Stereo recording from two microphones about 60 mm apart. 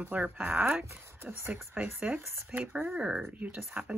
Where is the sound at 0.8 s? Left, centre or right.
Right.